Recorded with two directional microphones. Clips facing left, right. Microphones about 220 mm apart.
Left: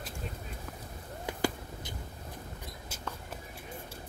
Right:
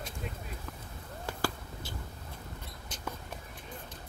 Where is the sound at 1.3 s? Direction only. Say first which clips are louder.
Left 3 dB; 20° left (ahead or behind).